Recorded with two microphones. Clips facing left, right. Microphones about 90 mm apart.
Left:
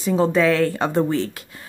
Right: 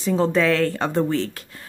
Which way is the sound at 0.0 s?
10° left (ahead or behind).